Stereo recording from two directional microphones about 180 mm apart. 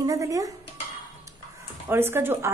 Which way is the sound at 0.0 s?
20° right (ahead or behind).